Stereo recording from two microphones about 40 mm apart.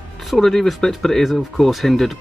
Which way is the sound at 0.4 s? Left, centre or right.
Centre.